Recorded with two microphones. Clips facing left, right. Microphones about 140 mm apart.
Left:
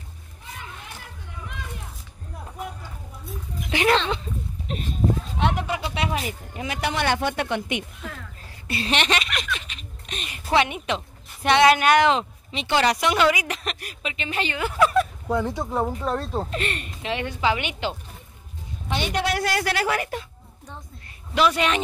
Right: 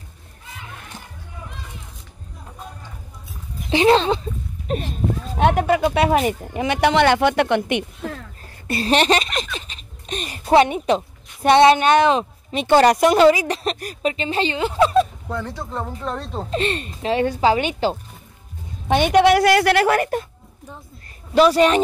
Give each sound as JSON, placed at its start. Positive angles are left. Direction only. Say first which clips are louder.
{"t": 3.7, "sound": "a woman's voice", "louder": "right 6 dB", "side_deg": -30}
{"t": 5.4, "sound": "speech", "louder": "right 11 dB", "side_deg": -55}
{"t": 8.6, "sound": "a sound", "louder": "right 7 dB", "side_deg": -40}
{"t": 10.5, "sound": "a woman's voice", "louder": "right 7 dB", "side_deg": -40}
{"t": 12.4, "sound": "a woman's voice", "louder": "right 8 dB", "side_deg": -45}
{"t": 15.2, "sound": "speech", "louder": "left 4 dB", "side_deg": 15}
{"t": 16.4, "sound": "a woman's voice", "louder": "right 6 dB", "side_deg": -30}
{"t": 18.9, "sound": "a woman's voice", "louder": "right 11 dB", "side_deg": -55}
{"t": 21.4, "sound": "a woman's voice", "louder": "right 7 dB", "side_deg": -40}